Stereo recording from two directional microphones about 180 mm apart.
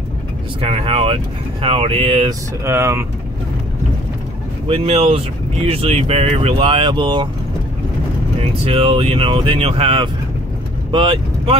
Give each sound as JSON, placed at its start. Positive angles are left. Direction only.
{"t": 0.6, "sound": "speech", "side_deg": -35}
{"t": 2.6, "sound": "speech", "side_deg": -15}
{"t": 4.6, "sound": "speech", "side_deg": -35}
{"t": 8.4, "sound": "speech", "side_deg": -30}